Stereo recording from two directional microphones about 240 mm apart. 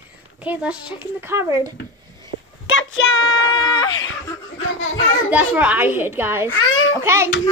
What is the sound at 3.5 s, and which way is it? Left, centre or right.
Speech, centre.